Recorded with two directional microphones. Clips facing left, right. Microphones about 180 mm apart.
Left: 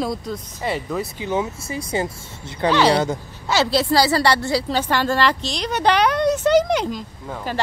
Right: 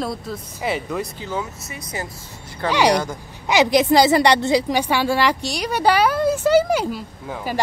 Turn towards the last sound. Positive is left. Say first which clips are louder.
# right 1 dB
turn(degrees=-10)  # may be behind; listen again after turning